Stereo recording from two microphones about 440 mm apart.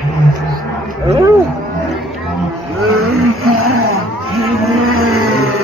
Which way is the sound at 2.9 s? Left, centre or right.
Right.